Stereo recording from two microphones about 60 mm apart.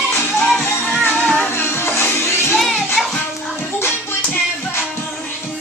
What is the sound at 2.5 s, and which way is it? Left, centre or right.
Music, centre.